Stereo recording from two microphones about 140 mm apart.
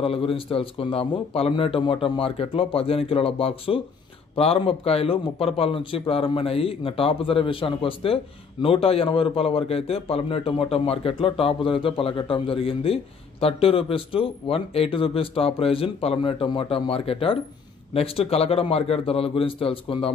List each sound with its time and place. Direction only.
0.0 s a man's voice: 40° left (ahead or behind)